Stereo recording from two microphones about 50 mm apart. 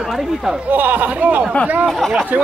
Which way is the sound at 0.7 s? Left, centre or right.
Right.